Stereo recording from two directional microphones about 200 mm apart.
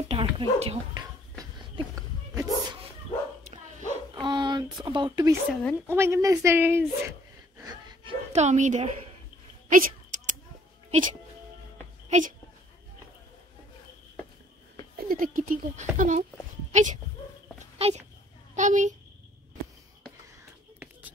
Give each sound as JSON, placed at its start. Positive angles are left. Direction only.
{"t": 0.1, "sound": "speech", "side_deg": -30}
{"t": 1.4, "sound": "a sound", "side_deg": -20}
{"t": 4.1, "sound": "dog", "side_deg": -20}
{"t": 4.8, "sound": "speech", "side_deg": -25}
{"t": 5.5, "sound": "a woman's voice", "side_deg": 5}
{"t": 5.8, "sound": "speech", "side_deg": -10}
{"t": 7.5, "sound": "a sound", "side_deg": -20}
{"t": 10.9, "sound": "speech", "side_deg": -40}
{"t": 15.0, "sound": "a child's voice", "side_deg": -45}